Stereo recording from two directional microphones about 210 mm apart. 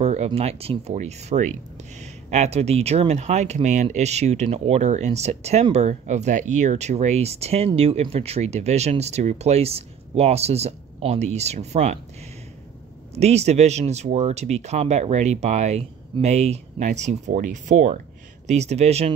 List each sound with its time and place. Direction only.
0.0 s speech: 30° right (ahead or behind)
13.1 s speech: 30° right (ahead or behind)